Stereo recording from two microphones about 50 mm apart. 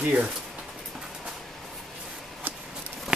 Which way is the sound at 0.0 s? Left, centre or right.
Right.